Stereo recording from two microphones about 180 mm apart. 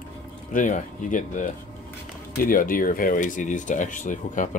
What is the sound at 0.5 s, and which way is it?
Speech, 45° left (ahead or behind).